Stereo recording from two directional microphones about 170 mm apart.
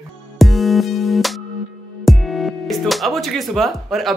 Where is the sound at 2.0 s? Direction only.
Centre (ahead or behind).